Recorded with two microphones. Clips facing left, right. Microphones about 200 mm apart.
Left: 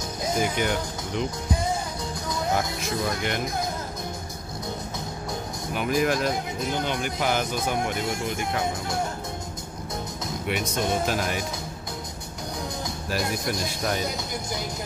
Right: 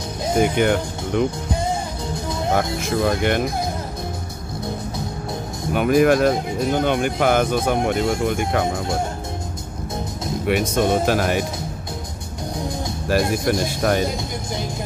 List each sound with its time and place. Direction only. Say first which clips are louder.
0.4 s speech: right 9 dB; 55° right (ahead or behind)
2.5 s speech: right 8 dB; 55° right (ahead or behind)
5.8 s speech: right 9 dB; 60° right (ahead or behind)
10.5 s speech: right 8 dB; 50° right (ahead or behind)
13.5 s speech: right 8 dB; 55° right (ahead or behind)